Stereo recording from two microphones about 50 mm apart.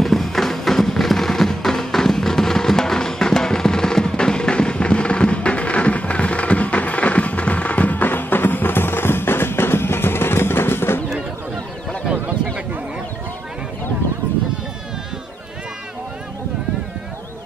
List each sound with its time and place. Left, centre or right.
0.0 s music: centre; by 11.0 s left